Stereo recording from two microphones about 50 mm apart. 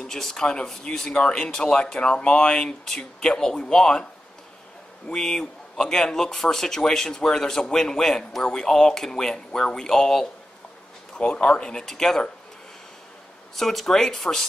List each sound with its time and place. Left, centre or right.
0.0 s speech: centre
11.1 s speech: centre
13.6 s speech: centre